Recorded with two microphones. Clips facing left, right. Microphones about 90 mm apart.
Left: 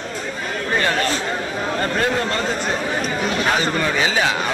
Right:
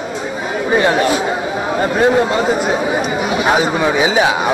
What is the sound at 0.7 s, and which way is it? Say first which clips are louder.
Speech: right 7 dB; 15° right (ahead or behind).